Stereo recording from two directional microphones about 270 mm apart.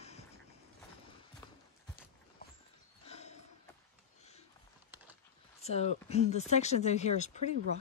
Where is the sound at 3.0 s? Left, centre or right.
Left.